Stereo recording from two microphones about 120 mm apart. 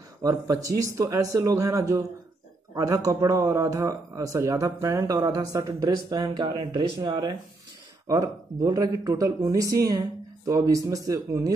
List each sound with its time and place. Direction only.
0.2 s speech: 30° right (ahead or behind)